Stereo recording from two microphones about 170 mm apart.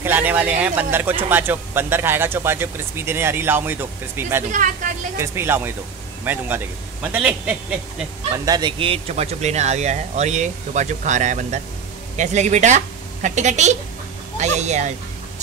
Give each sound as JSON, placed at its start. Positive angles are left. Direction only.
{"t": 0.0, "sound": "speech", "side_deg": -10}
{"t": 8.5, "sound": "a woman's voice", "side_deg": -25}